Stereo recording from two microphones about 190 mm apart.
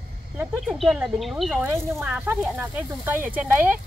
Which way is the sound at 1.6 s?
15° right (ahead or behind).